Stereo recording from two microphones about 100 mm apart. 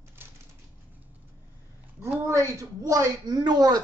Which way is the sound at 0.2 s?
20° right (ahead or behind).